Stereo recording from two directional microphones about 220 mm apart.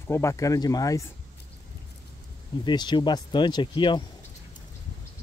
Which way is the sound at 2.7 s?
20° left (ahead or behind).